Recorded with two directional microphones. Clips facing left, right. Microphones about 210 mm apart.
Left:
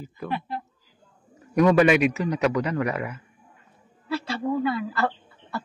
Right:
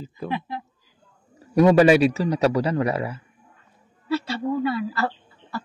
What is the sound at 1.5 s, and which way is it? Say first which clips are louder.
A man's voice: right 3 dB; 30° right (ahead or behind).